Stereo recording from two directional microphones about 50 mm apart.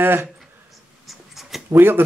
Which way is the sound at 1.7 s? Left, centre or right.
Right.